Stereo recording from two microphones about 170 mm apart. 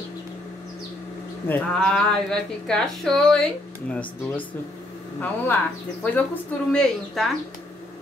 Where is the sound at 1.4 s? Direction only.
10° left (ahead or behind).